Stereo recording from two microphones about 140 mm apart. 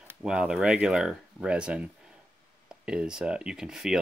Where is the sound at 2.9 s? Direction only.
5° right (ahead or behind).